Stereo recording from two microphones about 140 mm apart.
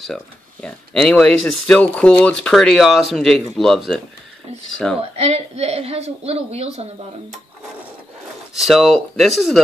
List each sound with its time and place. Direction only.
0.0 s speech: 5° left (ahead or behind)
5.1 s a woman's voice: 45° right (ahead or behind)
8.5 s speech: centre (ahead or behind)